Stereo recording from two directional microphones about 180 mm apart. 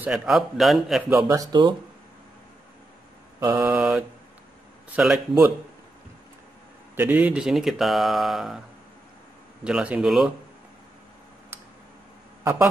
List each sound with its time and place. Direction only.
0.0 s speech: 5° right (ahead or behind)
1.3 s speech: 20° right (ahead or behind)
3.3 s mantra: 15° right (ahead or behind)
4.9 s speech: centre (ahead or behind)
7.0 s speech: 10° right (ahead or behind)
9.7 s speech: 5° right (ahead or behind)